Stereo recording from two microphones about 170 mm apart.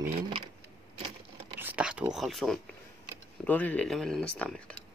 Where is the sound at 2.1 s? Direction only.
Centre (ahead or behind).